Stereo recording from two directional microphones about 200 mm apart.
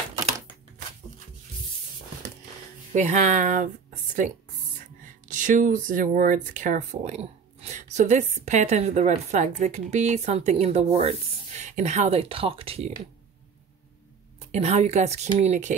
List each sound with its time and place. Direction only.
2.9 s speech: 35° right (ahead or behind)
5.3 s speech: 40° right (ahead or behind)
14.5 s speech: 30° right (ahead or behind)